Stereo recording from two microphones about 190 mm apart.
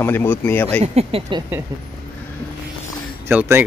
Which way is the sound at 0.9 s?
30° right (ahead or behind).